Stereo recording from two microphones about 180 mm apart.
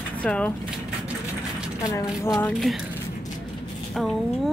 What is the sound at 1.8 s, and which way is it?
Speech, 20° left (ahead or behind).